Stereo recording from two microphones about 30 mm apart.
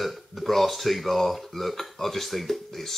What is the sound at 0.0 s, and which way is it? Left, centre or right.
Speech, centre.